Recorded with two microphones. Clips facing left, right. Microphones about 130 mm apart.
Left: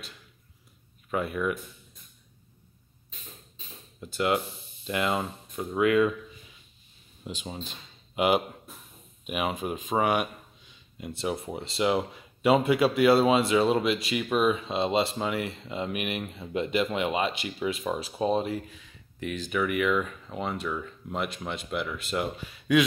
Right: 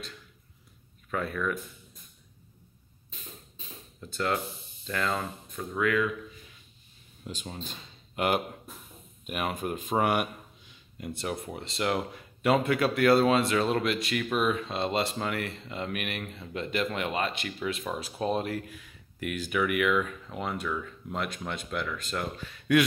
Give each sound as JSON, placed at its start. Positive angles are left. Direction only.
{"t": 1.1, "sound": "speech", "side_deg": 10}
{"t": 4.0, "sound": "speech", "side_deg": 10}
{"t": 7.3, "sound": "speech", "side_deg": 5}
{"t": 9.2, "sound": "speech", "side_deg": 5}